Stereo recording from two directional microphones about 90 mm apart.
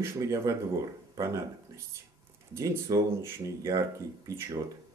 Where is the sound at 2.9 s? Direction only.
40° right (ahead or behind).